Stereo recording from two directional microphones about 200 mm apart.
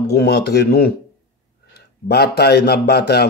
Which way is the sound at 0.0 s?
55° left (ahead or behind).